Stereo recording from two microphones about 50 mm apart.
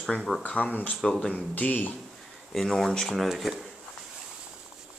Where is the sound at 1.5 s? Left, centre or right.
Left.